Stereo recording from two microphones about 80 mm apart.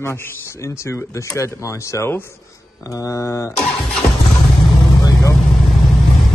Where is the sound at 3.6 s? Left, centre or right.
Centre.